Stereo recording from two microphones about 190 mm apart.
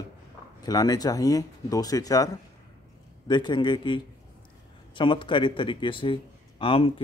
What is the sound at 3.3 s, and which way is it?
A man's voice, 25° left (ahead or behind).